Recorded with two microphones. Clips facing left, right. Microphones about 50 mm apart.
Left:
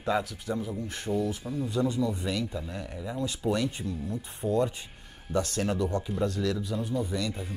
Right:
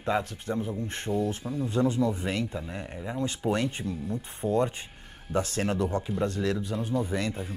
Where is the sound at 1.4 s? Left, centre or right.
Centre.